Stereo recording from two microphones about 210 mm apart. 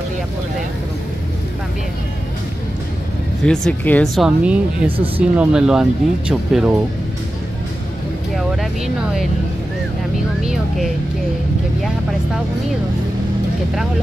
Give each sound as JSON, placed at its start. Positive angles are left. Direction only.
{"t": 3.4, "sound": "speech", "side_deg": 5}
{"t": 4.9, "sound": "speech", "side_deg": -25}
{"t": 5.4, "sound": "speech", "side_deg": -5}
{"t": 8.4, "sound": "speech", "side_deg": 0}